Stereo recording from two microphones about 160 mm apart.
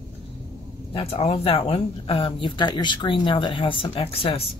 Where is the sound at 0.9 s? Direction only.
40° left (ahead or behind).